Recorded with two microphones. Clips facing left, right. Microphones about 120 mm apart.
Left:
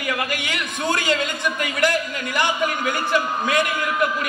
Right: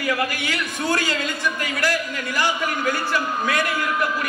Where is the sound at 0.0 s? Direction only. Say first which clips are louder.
Right 2 dB; 20° left (ahead or behind).